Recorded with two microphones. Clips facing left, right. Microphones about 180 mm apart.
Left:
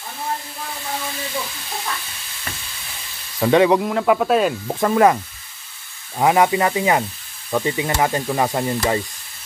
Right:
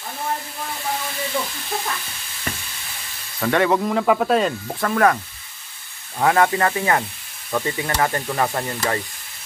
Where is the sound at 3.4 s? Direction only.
15° left (ahead or behind).